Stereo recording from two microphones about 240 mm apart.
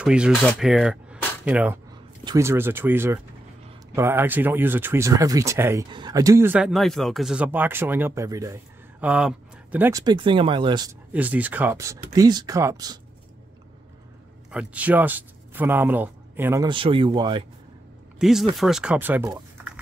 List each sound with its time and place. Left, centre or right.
0.0 s speech: centre
11.1 s speech: centre
14.5 s speech: centre
16.6 s speech: right
18.2 s speech: centre